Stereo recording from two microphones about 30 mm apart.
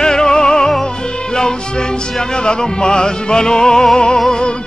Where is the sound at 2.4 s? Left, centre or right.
Left.